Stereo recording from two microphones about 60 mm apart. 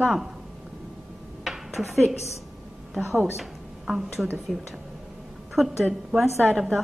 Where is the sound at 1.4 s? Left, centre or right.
Centre.